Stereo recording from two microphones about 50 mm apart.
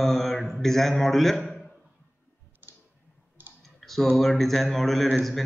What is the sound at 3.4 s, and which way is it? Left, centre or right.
Clicking, right.